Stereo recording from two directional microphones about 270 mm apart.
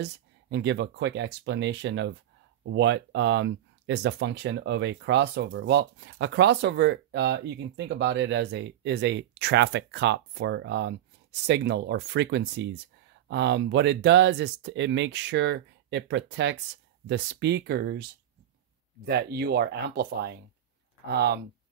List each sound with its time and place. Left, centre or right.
0.0 s speech: right
19.0 s speech: right